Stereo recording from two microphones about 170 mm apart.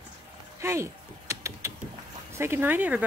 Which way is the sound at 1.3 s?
15° right (ahead or behind).